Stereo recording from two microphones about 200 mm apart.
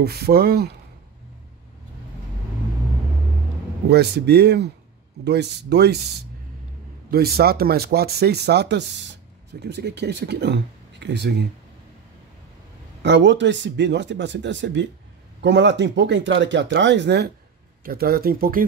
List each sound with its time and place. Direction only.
0.0 s speech: 50° right (ahead or behind)
3.9 s speech: 55° right (ahead or behind)
7.1 s speech: 50° right (ahead or behind)
13.0 s speech: 60° right (ahead or behind)